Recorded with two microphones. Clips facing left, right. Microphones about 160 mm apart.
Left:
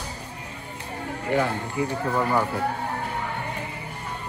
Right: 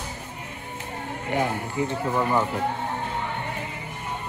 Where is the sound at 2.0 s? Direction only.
10° right (ahead or behind).